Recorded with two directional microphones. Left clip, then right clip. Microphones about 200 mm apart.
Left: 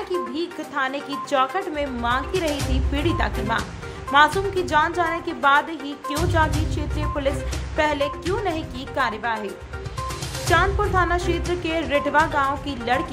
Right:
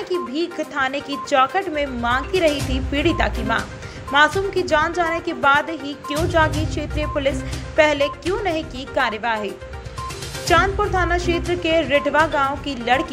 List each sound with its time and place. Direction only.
0.1 s a woman's voice: 5° right (ahead or behind)
10.5 s a woman's voice: 5° right (ahead or behind)